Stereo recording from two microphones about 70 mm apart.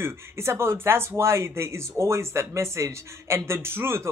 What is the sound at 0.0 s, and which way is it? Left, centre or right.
Speech, right.